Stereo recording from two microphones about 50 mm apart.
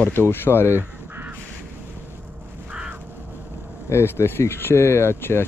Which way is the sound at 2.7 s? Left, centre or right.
Right.